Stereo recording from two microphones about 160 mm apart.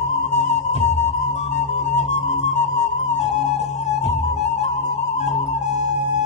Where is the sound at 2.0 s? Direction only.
45° left (ahead or behind).